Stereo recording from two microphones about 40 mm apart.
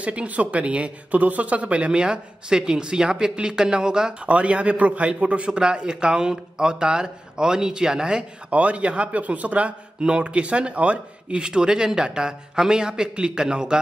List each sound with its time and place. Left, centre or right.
0.0 s speech: right
1.9 s speech: right
4.3 s speech: right
5.6 s speech: right
8.5 s speech: right
10.0 s speech: right